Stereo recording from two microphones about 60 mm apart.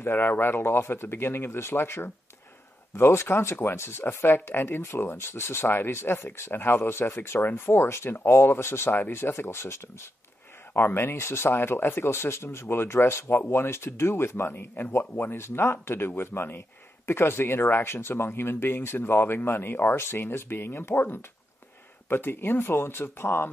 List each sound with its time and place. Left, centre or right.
0.0 s speech: left